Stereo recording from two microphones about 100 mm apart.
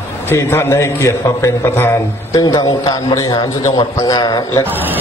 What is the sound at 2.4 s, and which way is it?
A man's voice, 45° left (ahead or behind).